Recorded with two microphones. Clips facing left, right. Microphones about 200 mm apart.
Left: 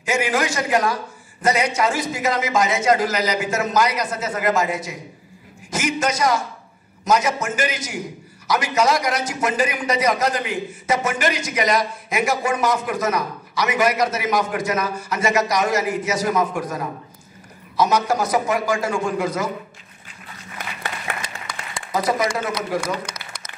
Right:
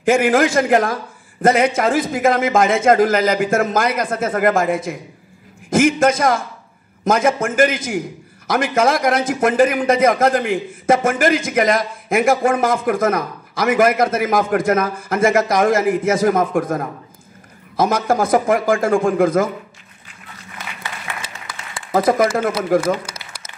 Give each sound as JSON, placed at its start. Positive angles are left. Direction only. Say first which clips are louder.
{"t": 0.0, "sound": "a man's voice", "louder": "right 7 dB", "side_deg": -55}
{"t": 21.9, "sound": "a man's voice", "louder": "right 6 dB", "side_deg": -50}
{"t": 23.1, "sound": "a sound", "louder": "even", "side_deg": -5}